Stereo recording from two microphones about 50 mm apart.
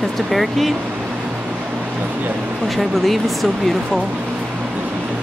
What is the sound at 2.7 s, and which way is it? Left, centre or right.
Speech, centre.